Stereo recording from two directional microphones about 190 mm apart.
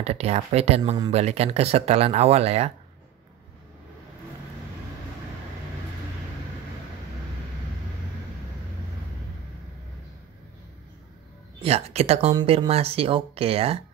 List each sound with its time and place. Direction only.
0.0 s speech: 35° right (ahead or behind)
11.6 s speech: 35° right (ahead or behind)